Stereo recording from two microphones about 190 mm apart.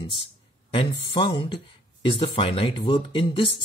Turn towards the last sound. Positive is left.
turn(degrees=30)  # may be behind; listen again after turning